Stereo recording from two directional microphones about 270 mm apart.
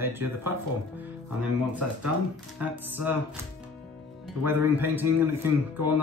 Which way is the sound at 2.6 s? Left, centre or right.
Centre.